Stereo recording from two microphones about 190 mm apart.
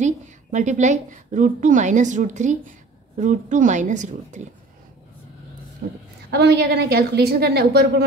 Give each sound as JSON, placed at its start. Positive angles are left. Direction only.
{"t": 0.0, "sound": "a woman's voice", "side_deg": -40}
{"t": 5.8, "sound": "a woman's voice", "side_deg": -55}